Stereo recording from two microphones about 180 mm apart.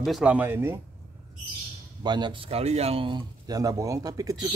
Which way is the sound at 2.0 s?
25° right (ahead or behind).